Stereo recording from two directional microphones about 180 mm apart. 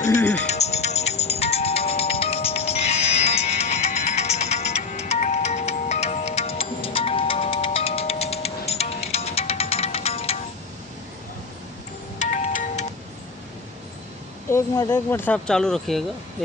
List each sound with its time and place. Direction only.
0.3 s music: 40° left (ahead or behind)
12.2 s music: 45° left (ahead or behind)
14.5 s speech: 15° left (ahead or behind)